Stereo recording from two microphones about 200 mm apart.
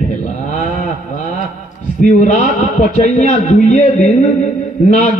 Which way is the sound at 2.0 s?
40° left (ahead or behind).